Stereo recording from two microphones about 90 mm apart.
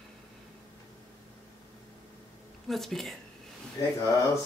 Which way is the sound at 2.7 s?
5° left (ahead or behind).